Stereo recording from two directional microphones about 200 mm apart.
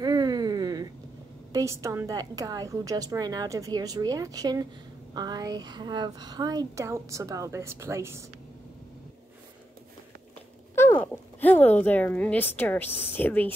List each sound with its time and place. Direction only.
0.0 s a sound: 20° right (ahead or behind)
1.5 s a woman's voice: 15° right (ahead or behind)
10.7 s speech: 10° left (ahead or behind)